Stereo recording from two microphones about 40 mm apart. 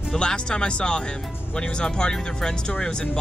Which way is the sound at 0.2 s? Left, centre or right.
Left.